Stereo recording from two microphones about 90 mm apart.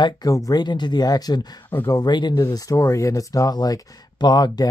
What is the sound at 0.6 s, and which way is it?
Speech, 55° left (ahead or behind).